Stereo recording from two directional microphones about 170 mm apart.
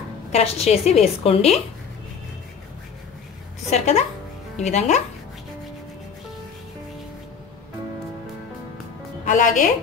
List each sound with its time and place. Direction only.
0.3 s a woman's voice: 40° left (ahead or behind)
3.7 s a woman's voice: 40° left (ahead or behind)
9.2 s a woman's voice: 50° left (ahead or behind)